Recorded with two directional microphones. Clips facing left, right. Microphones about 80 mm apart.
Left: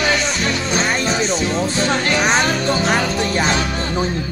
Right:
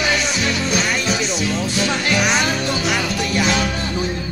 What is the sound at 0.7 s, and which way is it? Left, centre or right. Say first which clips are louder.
Music: left 2 dB; left.